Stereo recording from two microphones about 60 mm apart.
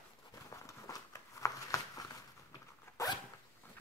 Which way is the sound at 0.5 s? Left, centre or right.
Left.